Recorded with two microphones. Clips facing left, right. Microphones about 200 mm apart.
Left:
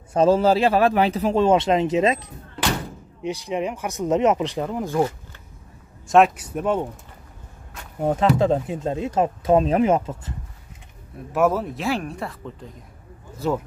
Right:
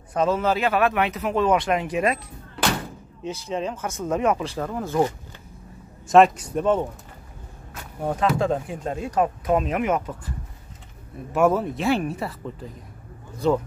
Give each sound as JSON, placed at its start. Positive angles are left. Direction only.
{"t": 0.1, "sound": "a man's voice", "side_deg": 30}
{"t": 6.0, "sound": "speech", "side_deg": 0}
{"t": 8.0, "sound": "speech", "side_deg": 25}
{"t": 11.3, "sound": "speech", "side_deg": 0}